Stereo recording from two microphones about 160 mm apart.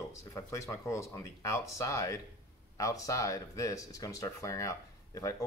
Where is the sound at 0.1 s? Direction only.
20° left (ahead or behind).